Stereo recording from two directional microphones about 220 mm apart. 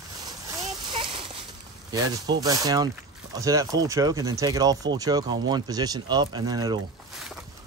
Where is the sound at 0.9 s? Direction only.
25° right (ahead or behind).